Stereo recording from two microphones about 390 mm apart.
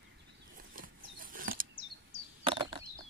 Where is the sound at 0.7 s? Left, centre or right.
Right.